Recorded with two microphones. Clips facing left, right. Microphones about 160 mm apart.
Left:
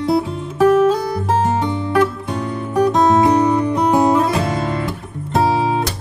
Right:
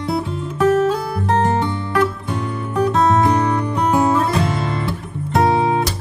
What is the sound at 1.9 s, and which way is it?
Music, centre (ahead or behind).